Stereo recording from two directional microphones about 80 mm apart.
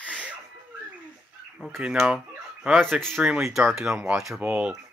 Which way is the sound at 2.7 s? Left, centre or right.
Centre.